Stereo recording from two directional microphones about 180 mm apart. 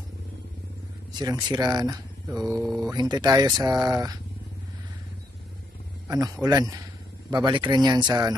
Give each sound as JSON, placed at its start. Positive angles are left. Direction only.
{"t": 1.1, "sound": "speech", "side_deg": -20}
{"t": 6.0, "sound": "speech", "side_deg": -20}